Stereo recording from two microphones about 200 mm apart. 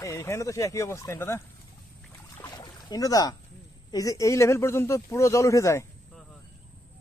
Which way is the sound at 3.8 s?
20° left (ahead or behind).